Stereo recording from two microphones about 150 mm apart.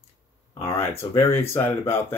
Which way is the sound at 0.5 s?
20° left (ahead or behind).